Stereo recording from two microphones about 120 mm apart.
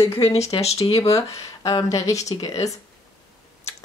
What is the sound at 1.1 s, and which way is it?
A woman's voice, 30° left (ahead or behind).